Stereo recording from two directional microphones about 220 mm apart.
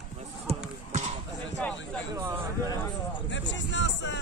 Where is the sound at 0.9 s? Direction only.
30° right (ahead or behind).